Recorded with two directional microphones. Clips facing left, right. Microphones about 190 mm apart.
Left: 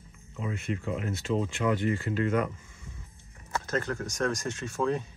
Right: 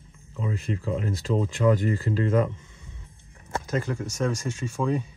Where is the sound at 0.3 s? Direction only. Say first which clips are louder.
Right 3 dB; 35° right (ahead or behind).